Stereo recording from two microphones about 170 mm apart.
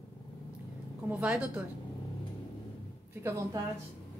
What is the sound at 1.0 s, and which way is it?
Speech, 5° right (ahead or behind).